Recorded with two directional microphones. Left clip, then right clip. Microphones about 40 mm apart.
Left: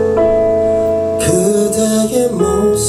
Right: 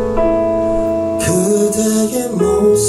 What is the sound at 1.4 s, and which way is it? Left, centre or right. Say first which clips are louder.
Music: left 1 dB; right.